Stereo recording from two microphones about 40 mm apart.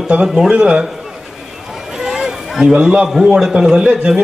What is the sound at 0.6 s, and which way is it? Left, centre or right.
Speech, right.